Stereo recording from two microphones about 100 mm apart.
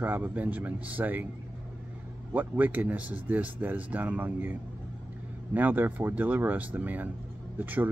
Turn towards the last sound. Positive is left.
turn(degrees=-20)  # may be behind; listen again after turning